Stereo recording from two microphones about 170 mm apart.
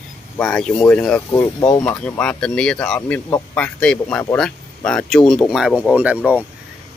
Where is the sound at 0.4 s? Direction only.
5° left (ahead or behind).